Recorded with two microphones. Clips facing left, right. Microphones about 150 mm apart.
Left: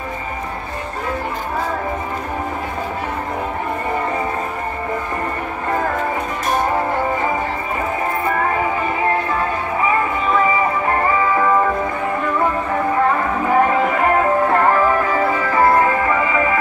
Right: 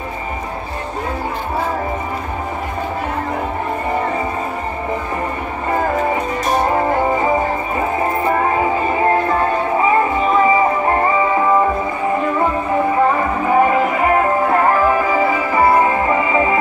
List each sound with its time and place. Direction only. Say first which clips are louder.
13.5 s music: right 2 dB; 5° right (ahead or behind)
15.6 s music: right 1 dB; 20° right (ahead or behind)